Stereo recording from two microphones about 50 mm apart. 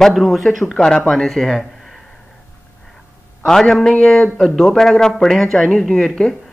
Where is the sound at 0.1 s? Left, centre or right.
Centre.